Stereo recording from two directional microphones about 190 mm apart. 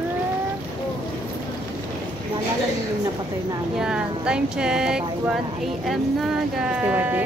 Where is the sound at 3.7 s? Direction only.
5° right (ahead or behind).